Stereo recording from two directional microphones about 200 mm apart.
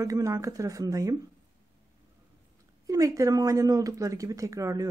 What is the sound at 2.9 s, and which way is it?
Speech, 15° right (ahead or behind).